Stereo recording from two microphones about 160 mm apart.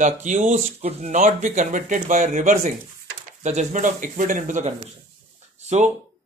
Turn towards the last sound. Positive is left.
turn(degrees=-45)  # may be behind; listen again after turning